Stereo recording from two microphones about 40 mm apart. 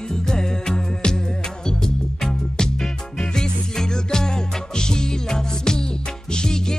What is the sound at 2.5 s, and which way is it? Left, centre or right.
Music, centre.